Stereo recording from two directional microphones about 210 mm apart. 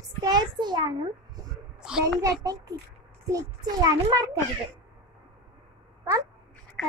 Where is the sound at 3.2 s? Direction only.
15° right (ahead or behind).